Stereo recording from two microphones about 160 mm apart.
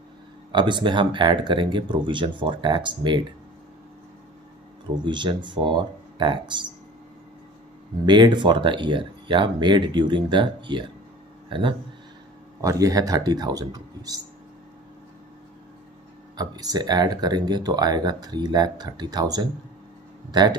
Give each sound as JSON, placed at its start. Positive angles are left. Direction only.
{"t": 0.5, "sound": "speech", "side_deg": -30}
{"t": 5.0, "sound": "speech", "side_deg": -30}
{"t": 8.0, "sound": "speech", "side_deg": -30}
{"t": 12.6, "sound": "speech", "side_deg": -20}
{"t": 16.3, "sound": "speech", "side_deg": -25}